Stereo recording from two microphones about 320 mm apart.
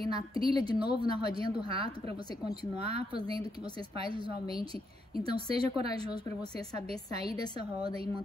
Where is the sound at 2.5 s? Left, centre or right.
Centre.